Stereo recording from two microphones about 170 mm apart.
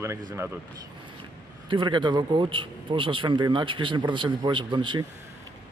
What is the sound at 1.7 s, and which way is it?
Speech, 30° right (ahead or behind).